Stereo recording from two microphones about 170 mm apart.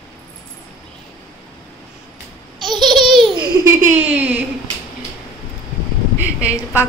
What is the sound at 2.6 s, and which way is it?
Laughter, 25° right (ahead or behind).